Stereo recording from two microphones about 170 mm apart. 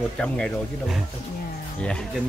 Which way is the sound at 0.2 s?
5° left (ahead or behind).